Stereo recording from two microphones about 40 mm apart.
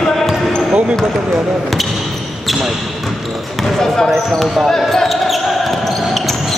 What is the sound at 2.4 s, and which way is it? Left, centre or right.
Basketball bounce, centre.